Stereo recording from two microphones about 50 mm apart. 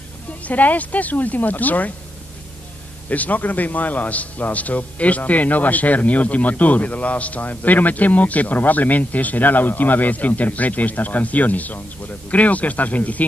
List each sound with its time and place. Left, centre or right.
0.3 s a man's voice: left
3.1 s a man's voice: left